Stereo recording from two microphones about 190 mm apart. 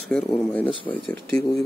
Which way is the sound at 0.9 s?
15° left (ahead or behind).